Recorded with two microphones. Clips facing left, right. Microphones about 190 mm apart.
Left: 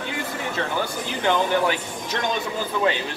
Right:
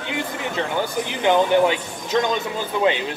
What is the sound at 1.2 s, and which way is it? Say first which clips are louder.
Speech: right 5 dB; 15° right (ahead or behind).